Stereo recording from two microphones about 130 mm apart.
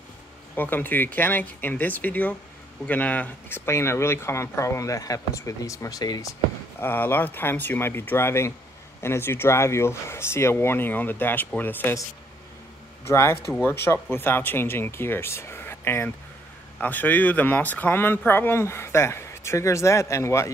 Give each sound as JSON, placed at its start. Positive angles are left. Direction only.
{"t": 0.6, "sound": "speech", "side_deg": 15}
{"t": 6.8, "sound": "speech", "side_deg": 15}
{"t": 13.1, "sound": "speech", "side_deg": 20}